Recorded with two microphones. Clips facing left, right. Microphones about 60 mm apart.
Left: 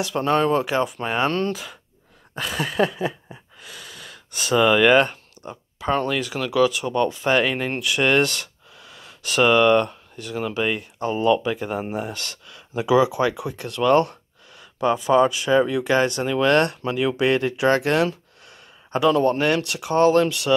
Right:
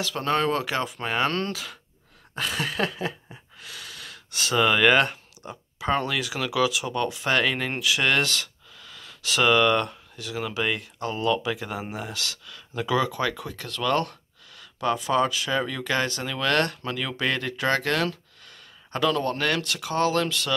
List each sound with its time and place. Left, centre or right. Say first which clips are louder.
0.0 s speech: left 4 dB; centre
2.3 s a sound: left 4 dB; centre
5.9 s speech: left 3 dB; centre
7.2 s speech: left 4 dB; centre
12.5 s speech: left 7 dB; centre